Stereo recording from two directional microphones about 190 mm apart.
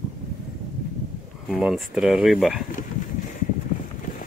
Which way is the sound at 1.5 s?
5° right (ahead or behind).